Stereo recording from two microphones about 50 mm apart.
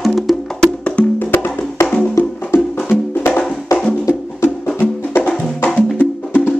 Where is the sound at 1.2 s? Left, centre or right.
Left.